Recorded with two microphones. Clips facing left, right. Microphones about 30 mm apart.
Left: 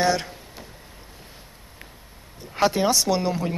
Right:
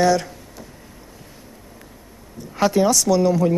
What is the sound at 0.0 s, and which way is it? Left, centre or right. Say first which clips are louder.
Speech: right 5 dB; left.